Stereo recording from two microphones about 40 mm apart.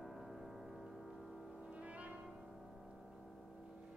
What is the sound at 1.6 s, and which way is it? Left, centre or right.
Music, right.